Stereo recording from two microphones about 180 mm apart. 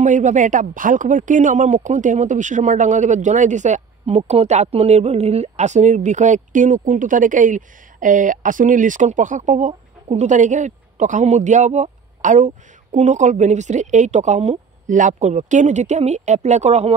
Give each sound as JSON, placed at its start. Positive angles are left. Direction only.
{"t": 0.0, "sound": "speech", "side_deg": -45}